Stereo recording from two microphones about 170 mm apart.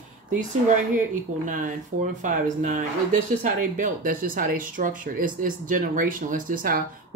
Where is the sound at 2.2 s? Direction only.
50° right (ahead or behind).